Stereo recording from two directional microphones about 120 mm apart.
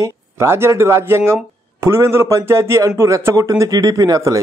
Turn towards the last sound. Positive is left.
turn(degrees=-30)  # may be behind; listen again after turning